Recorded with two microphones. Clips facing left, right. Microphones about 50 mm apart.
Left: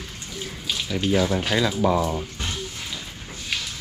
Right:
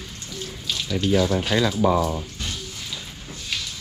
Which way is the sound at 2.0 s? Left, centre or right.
Centre.